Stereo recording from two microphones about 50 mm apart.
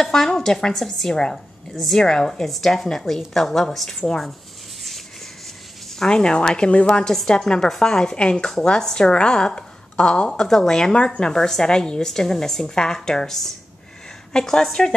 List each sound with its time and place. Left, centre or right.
0.0 s a woman's voice: centre
4.0 s a woman's voice: centre
5.9 s a woman's voice: centre